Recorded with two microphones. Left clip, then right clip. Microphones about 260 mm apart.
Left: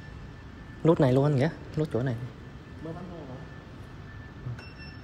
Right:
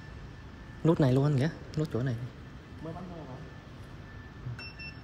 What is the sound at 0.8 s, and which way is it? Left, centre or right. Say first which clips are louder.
Speech: left 4 dB; centre.